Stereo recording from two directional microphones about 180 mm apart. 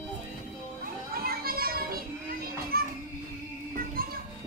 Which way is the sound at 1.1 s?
55° right (ahead or behind).